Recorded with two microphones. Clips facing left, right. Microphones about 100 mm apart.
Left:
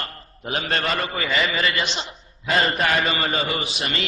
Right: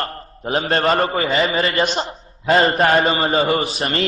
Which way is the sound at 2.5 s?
35° right (ahead or behind).